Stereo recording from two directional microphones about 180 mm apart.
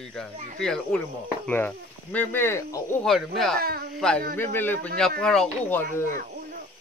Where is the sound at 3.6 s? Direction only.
55° right (ahead or behind).